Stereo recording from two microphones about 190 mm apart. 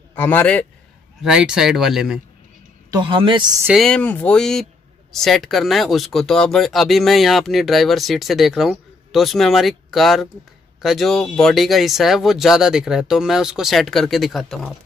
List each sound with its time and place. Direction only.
0.1 s a man's voice: 10° left (ahead or behind)
1.2 s speech: 5° right (ahead or behind)
2.9 s speech: 25° right (ahead or behind)
3.6 s speech: centre (ahead or behind)